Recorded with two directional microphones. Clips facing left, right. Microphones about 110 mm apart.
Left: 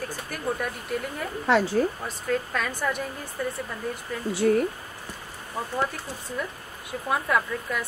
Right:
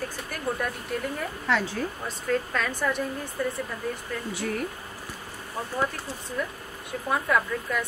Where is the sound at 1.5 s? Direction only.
40° left (ahead or behind).